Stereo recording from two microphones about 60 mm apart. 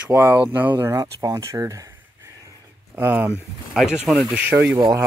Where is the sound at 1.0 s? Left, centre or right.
Right.